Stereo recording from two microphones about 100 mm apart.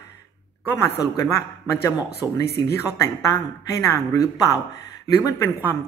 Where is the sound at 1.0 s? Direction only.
35° left (ahead or behind).